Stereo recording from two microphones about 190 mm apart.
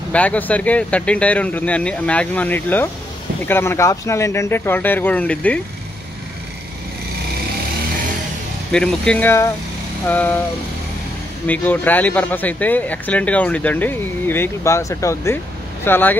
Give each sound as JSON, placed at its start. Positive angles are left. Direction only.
{"t": 0.1, "sound": "speech", "side_deg": 5}
{"t": 8.7, "sound": "speech", "side_deg": 5}
{"t": 11.4, "sound": "speech", "side_deg": 10}